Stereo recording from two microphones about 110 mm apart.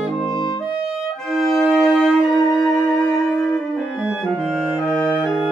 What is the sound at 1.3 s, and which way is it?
Music, 5° left (ahead or behind).